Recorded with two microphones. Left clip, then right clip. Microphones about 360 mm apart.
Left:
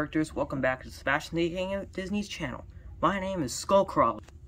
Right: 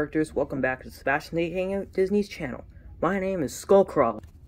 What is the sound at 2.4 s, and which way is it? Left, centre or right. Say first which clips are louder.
Speech: right 2 dB; left.